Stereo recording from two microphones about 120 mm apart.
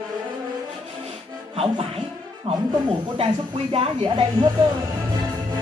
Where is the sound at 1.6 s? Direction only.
50° right (ahead or behind).